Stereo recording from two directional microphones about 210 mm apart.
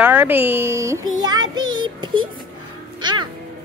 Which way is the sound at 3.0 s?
20° right (ahead or behind).